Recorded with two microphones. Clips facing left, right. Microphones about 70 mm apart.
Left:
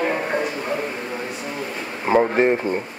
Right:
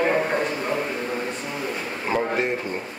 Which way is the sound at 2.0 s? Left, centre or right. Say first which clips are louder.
Left 7 dB; left.